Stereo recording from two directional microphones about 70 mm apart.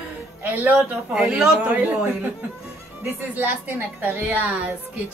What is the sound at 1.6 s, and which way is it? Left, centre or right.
Speech, right.